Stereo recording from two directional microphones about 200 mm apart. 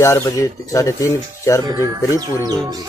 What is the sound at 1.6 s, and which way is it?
Speech, 15° right (ahead or behind).